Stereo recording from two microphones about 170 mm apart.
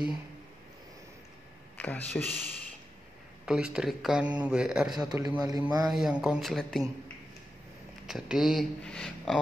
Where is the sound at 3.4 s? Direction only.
5° right (ahead or behind).